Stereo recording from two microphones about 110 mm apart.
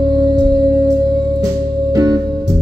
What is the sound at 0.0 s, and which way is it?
Music, 40° right (ahead or behind).